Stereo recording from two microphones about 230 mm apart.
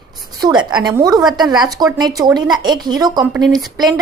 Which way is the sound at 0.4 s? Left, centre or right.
Centre.